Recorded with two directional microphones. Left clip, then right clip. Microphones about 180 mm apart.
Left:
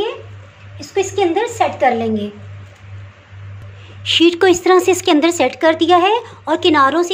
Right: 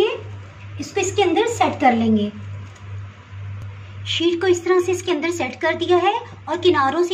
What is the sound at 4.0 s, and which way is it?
A woman's voice, 60° left (ahead or behind).